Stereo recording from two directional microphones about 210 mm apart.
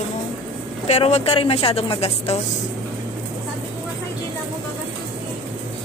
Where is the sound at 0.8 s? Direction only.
30° left (ahead or behind).